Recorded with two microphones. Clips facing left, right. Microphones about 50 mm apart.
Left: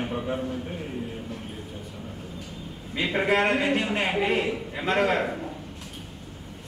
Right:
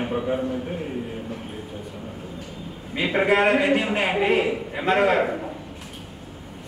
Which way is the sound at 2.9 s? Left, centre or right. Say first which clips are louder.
Right 3 dB; centre.